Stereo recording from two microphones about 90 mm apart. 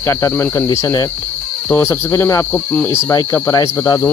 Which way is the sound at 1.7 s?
25° left (ahead or behind).